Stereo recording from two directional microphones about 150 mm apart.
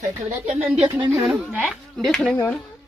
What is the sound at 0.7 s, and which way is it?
Speech, 30° right (ahead or behind).